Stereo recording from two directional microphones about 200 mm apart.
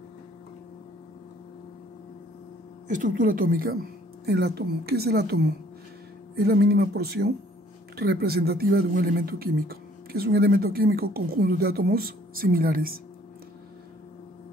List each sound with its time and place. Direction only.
2.9 s speech: 40° right (ahead or behind)